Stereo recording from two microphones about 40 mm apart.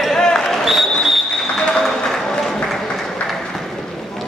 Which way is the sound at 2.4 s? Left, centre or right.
Centre.